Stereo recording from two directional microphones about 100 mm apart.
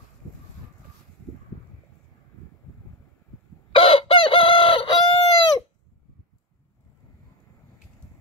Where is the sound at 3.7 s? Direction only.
65° left (ahead or behind).